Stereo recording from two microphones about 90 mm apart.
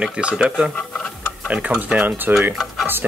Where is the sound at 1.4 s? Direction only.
15° right (ahead or behind).